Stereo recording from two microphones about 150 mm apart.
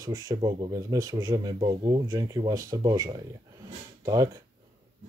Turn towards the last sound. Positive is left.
turn(degrees=-25)  # may be behind; listen again after turning